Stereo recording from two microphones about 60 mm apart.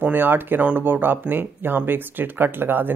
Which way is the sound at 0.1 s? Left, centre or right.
Right.